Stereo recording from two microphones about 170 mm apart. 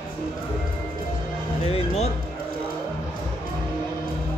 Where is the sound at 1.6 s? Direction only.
35° left (ahead or behind).